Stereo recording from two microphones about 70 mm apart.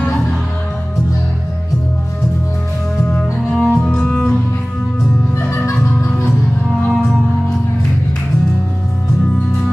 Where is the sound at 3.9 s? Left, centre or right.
Centre.